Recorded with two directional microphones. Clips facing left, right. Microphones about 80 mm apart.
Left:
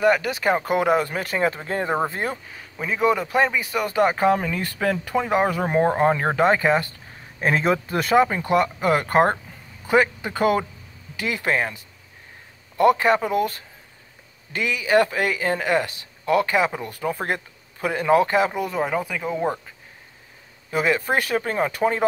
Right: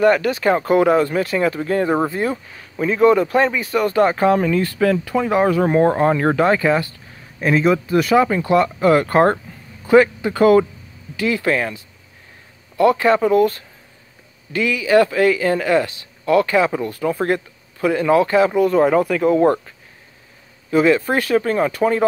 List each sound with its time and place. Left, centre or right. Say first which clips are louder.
0.0 s speech: right 4 dB; centre
2.8 s speech: right 7 dB; centre; by 6.9 s left
7.3 s speech: right 4 dB; left
8.2 s speech: right 3 dB; left
18.5 s speech: right 10 dB; centre
20.7 s speech: right 6 dB; centre